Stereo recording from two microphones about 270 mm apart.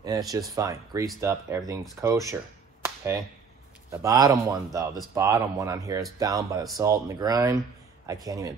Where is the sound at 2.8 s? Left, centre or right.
Centre.